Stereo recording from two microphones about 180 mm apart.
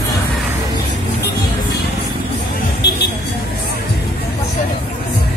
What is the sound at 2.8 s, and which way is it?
Vehicle, 65° left (ahead or behind).